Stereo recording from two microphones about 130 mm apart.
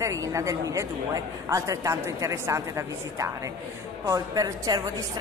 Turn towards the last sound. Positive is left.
turn(degrees=-30)  # may be behind; listen again after turning